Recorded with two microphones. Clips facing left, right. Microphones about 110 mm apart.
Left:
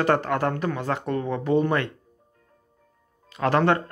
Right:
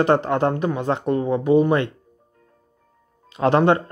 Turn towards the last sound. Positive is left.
turn(degrees=-20)  # may be behind; listen again after turning